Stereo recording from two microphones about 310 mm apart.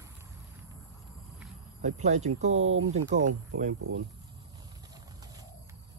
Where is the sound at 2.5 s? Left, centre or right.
Right.